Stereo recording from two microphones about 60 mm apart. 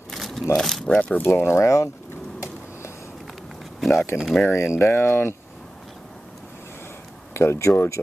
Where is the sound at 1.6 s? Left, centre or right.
Left.